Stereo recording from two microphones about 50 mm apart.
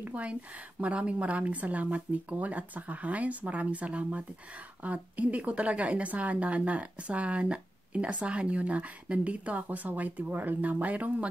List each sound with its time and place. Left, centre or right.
0.0 s a woman's voice: right